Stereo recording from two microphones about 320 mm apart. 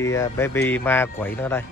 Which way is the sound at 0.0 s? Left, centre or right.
Centre.